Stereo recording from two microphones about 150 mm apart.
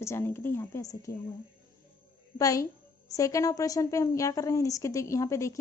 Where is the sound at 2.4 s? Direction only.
20° left (ahead or behind).